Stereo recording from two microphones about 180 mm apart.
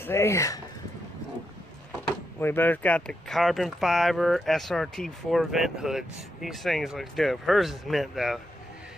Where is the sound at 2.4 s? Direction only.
10° left (ahead or behind).